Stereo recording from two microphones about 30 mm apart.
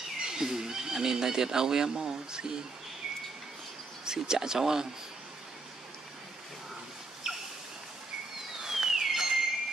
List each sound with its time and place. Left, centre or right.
0.2 s speech: centre
4.0 s speech: right
7.2 s a sound: centre
8.5 s car alarm: centre